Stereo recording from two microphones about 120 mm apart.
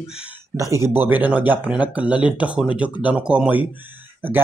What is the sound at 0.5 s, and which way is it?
Speech, 25° right (ahead or behind).